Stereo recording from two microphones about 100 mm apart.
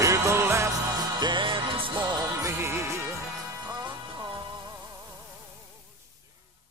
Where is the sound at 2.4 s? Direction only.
25° right (ahead or behind).